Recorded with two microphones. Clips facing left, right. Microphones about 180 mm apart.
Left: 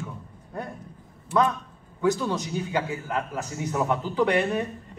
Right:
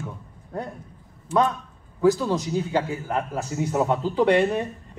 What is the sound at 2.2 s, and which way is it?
A man's voice, 30° right (ahead or behind).